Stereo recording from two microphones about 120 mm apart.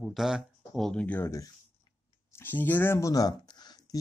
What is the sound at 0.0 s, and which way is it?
Speech, centre (ahead or behind).